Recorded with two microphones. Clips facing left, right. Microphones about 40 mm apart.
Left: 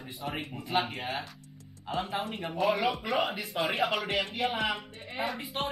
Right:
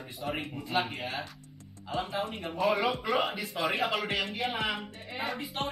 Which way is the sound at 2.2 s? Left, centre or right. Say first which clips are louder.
Even; centre.